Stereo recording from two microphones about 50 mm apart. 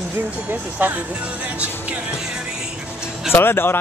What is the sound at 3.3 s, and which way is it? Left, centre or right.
Speech, left.